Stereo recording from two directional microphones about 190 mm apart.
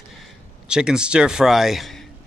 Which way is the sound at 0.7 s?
5° right (ahead or behind).